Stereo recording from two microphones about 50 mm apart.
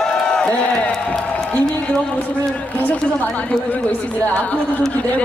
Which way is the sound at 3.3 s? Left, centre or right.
Left.